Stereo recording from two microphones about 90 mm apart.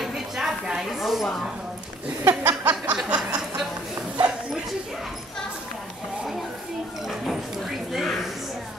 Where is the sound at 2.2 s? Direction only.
30° right (ahead or behind).